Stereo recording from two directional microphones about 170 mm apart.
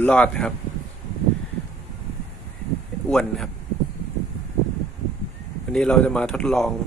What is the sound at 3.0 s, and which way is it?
Speech, 5° left (ahead or behind).